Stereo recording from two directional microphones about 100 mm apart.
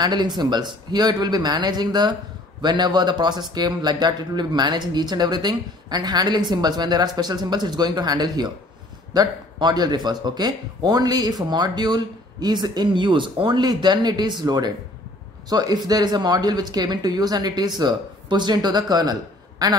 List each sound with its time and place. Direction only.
0.0 s speech: 45° right (ahead or behind)